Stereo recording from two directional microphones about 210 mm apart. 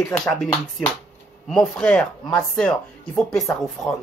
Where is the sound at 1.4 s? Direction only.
Centre (ahead or behind).